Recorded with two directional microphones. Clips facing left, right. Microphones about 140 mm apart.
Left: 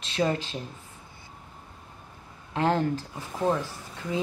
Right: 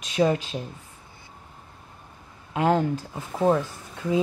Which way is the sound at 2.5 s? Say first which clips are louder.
Right 3 dB; 15° right (ahead or behind).